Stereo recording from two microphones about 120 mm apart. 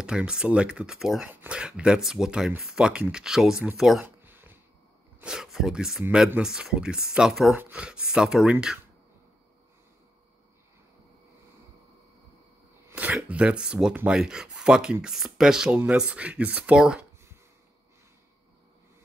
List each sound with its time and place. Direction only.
0.0 s speech: 10° right (ahead or behind)
4.0 s a sound: 15° right (ahead or behind)
5.2 s speech: 5° right (ahead or behind)
12.8 s speech: 15° right (ahead or behind)